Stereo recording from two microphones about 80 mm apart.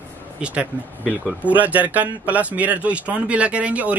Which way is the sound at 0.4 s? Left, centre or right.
Centre.